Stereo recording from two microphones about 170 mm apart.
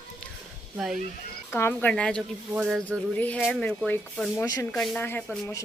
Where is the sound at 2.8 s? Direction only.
10° left (ahead or behind).